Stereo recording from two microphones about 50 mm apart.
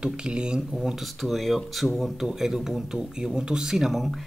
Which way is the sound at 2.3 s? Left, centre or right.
Centre.